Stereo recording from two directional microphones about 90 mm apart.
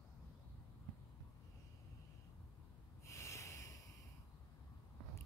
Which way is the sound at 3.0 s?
30° left (ahead or behind).